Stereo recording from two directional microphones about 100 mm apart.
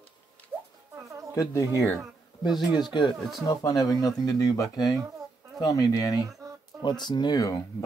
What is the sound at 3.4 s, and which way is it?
Speech, 35° left (ahead or behind).